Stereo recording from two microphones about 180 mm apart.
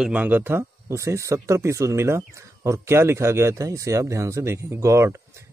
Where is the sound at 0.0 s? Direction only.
10° right (ahead or behind).